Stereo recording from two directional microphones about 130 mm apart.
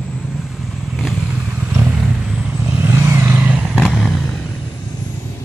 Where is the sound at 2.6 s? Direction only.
20° right (ahead or behind); by 4.4 s centre (ahead or behind).